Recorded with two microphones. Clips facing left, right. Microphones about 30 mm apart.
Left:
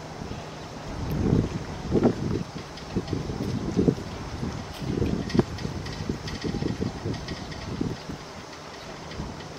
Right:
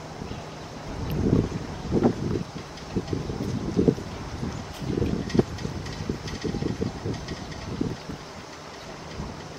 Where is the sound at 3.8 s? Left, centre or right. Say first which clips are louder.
Right 1 dB; centre.